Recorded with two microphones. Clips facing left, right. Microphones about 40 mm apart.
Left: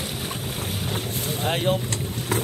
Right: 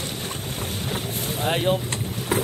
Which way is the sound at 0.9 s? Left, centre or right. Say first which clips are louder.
Even; centre.